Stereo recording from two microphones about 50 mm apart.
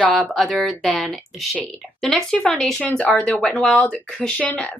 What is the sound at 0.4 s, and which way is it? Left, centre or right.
A woman's voice, centre.